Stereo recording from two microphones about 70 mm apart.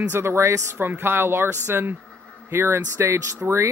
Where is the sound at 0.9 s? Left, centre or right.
Right.